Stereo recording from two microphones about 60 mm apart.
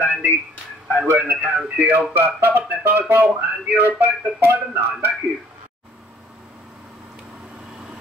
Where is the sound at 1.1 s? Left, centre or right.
Right.